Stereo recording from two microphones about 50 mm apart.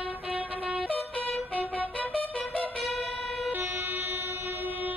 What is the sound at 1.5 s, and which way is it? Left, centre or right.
Music, left.